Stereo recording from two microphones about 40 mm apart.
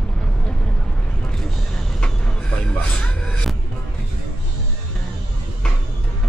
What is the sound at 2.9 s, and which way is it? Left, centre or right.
Music, left.